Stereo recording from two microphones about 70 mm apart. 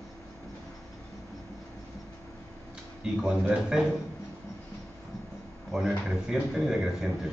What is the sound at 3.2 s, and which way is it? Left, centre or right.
Speech, centre.